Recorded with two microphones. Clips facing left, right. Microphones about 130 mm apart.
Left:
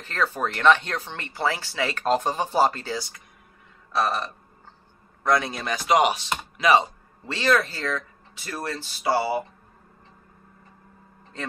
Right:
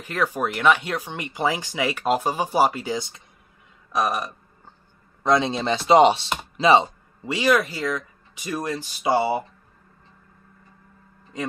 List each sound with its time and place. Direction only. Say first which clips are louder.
0.0 s speech: right 2 dB; 10° right (ahead or behind)
5.2 s chopping: right 3 dB; 20° right (ahead or behind)
6.5 s speech: right 3 dB; 25° right (ahead or behind)
7.2 s speech: right 2 dB; 10° right (ahead or behind)
11.3 s speech: right 5 dB; 15° right (ahead or behind)